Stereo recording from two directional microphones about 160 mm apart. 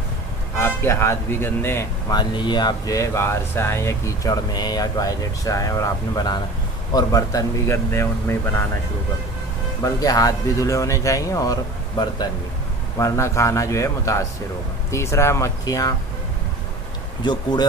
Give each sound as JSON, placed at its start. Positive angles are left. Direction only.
{"t": 0.6, "sound": "speech", "side_deg": 15}
{"t": 2.1, "sound": "speech", "side_deg": 30}
{"t": 9.9, "sound": "speech", "side_deg": 25}
{"t": 17.2, "sound": "speech", "side_deg": 25}